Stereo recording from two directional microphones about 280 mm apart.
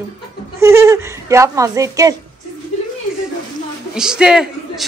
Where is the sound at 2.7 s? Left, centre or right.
Left.